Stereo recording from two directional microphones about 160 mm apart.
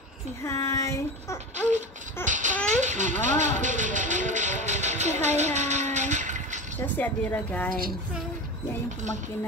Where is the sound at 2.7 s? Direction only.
50° right (ahead or behind).